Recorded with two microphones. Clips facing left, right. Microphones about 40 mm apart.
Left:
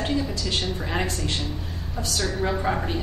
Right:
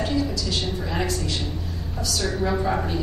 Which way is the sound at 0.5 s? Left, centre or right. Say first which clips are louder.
Even; left.